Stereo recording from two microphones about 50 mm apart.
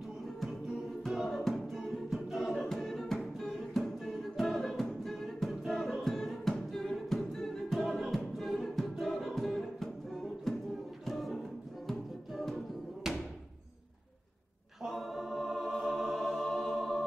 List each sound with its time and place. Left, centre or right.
1.1 s music: centre
2.2 s choir: centre
2.5 s music: centre
13.0 s a sound: centre
14.9 s choir: centre